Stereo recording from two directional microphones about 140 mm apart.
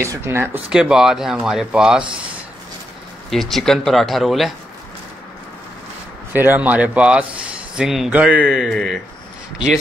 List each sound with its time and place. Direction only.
0.0 s speech: 20° right (ahead or behind)
0.7 s speech: 5° right (ahead or behind)
3.3 s speech: centre (ahead or behind)
6.3 s speech: 15° right (ahead or behind)